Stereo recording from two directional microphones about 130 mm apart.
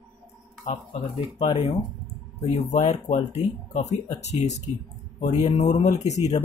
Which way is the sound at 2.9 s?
65° left (ahead or behind).